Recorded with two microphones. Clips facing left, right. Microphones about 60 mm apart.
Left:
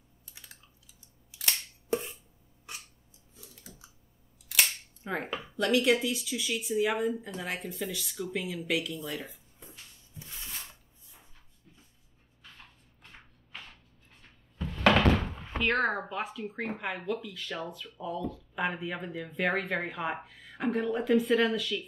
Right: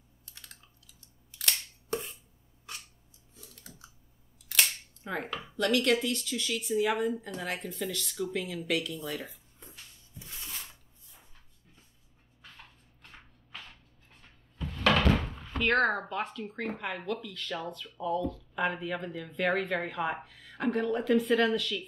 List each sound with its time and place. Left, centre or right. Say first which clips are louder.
0.3 s typing: even; centre
1.4 s scissors: even; centre
5.0 s chopping: left 1 dB; centre
5.3 s speech: left 1 dB; centre
14.8 s door: left 2 dB; left
15.3 s door: even; centre
15.6 s speech: right 2 dB; centre